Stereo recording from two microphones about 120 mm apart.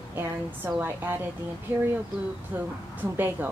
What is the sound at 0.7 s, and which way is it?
A woman's voice, 15° right (ahead or behind).